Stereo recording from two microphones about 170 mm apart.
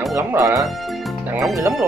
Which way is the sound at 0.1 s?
15° right (ahead or behind).